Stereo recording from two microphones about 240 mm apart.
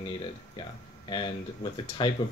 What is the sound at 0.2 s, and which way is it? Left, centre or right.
Speech, centre.